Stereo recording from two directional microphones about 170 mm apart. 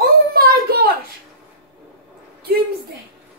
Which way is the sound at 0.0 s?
60° right (ahead or behind).